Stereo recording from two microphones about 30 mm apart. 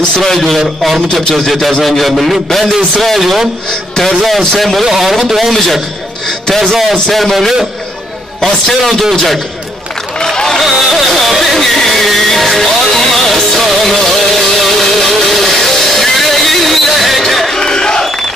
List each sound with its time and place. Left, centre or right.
0.6 s a man's voice: centre
1.4 s a man's voice: centre
4.6 s a man's voice: centre
4.8 s a man's voice: centre
8.6 s a man's voice: centre
10.6 s music: centre
17.6 s crowd: left